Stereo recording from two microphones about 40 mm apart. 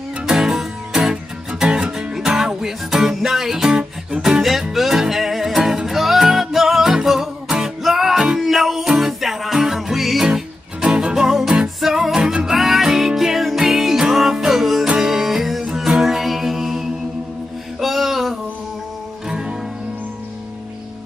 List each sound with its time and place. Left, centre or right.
0.2 s music: centre
3.6 s music: centre
4.4 s music: centre
10.2 s music: right
17.7 s a sound: centre
19.2 s music: centre